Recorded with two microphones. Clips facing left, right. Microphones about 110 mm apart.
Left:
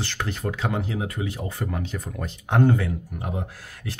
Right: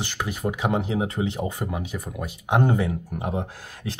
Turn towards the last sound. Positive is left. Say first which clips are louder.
# right 2 dB
turn(degrees=-20)  # may be behind; listen again after turning